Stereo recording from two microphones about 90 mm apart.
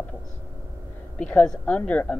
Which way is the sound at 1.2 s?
10° left (ahead or behind).